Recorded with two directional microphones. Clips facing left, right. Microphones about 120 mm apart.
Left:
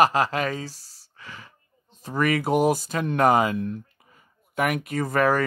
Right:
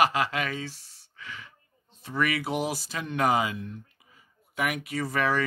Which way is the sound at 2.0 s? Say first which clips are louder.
Left 5 dB; 40° left (ahead or behind).